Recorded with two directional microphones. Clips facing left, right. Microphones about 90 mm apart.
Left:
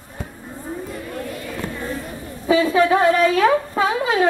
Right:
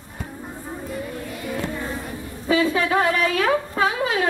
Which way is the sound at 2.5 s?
30° left (ahead or behind).